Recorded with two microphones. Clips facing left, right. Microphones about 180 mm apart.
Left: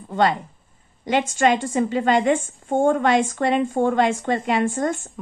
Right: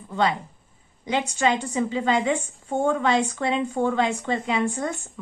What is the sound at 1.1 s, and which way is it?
Speech, 70° left (ahead or behind).